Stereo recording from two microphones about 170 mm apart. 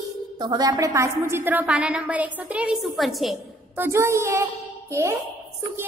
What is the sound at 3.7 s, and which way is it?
A child's voice, 15° right (ahead or behind).